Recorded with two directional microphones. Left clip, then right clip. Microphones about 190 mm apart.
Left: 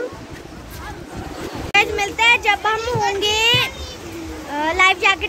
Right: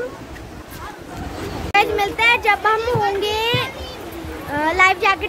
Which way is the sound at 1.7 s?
5° right (ahead or behind).